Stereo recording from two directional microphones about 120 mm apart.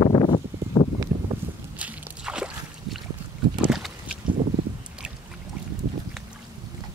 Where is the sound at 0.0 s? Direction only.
40° left (ahead or behind).